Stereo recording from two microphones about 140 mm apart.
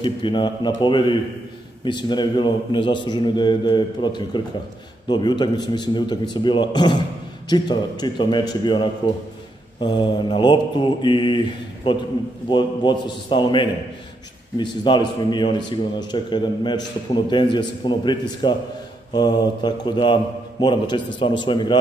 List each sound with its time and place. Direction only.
0.0 s a man's voice: 35° left (ahead or behind)